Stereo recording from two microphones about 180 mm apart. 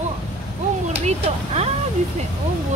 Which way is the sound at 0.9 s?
35° right (ahead or behind).